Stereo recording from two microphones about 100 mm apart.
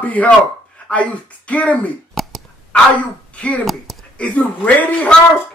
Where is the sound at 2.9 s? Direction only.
15° left (ahead or behind).